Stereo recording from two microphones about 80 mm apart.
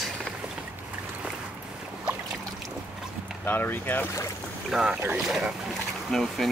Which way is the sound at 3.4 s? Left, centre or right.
Left.